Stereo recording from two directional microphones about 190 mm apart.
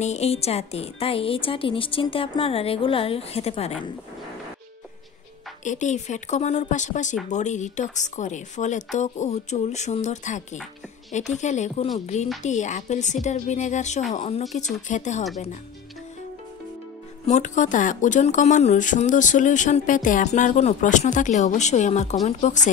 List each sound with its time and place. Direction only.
0.0 s a woman's voice: 35° left (ahead or behind)
5.6 s speech: 40° left (ahead or behind)
17.3 s speech: 40° left (ahead or behind)